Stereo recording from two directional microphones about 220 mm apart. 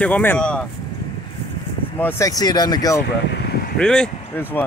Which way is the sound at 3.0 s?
50° left (ahead or behind).